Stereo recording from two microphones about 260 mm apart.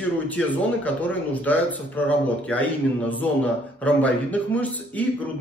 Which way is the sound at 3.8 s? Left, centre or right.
Centre.